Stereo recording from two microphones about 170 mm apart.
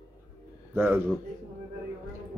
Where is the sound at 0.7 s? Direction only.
10° right (ahead or behind).